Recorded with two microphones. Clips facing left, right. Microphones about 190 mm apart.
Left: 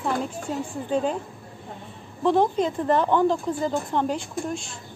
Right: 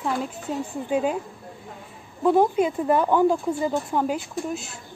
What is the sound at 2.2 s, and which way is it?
Speech, 10° right (ahead or behind).